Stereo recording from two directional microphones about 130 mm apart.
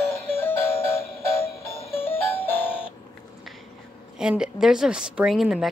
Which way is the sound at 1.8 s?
50° left (ahead or behind).